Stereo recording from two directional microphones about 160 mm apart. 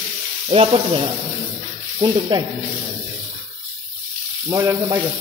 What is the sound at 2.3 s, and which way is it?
Speech, 30° right (ahead or behind).